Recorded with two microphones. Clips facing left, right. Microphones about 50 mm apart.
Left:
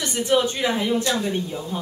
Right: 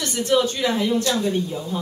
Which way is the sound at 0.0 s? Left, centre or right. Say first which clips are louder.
Right 1 dB; centre.